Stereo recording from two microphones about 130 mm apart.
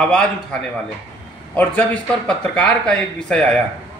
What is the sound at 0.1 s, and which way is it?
Speech, 5° left (ahead or behind).